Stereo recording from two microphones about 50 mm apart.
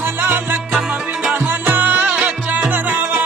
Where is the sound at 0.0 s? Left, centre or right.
Right.